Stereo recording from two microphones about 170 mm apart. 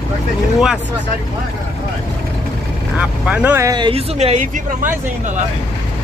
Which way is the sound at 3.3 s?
10° right (ahead or behind).